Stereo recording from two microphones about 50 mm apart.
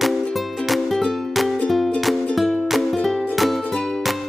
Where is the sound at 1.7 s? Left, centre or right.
Centre.